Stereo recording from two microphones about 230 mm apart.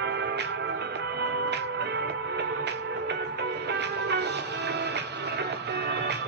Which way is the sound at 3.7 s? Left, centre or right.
Right.